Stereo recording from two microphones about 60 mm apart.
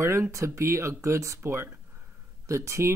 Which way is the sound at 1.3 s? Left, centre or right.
Right.